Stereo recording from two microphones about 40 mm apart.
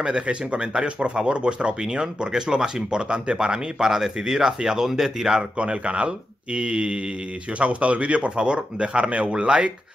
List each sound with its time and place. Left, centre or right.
0.0 s speech: right
5.6 s speech: right